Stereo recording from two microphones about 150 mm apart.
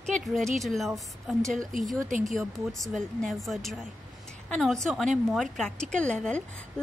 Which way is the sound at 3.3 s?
Centre (ahead or behind).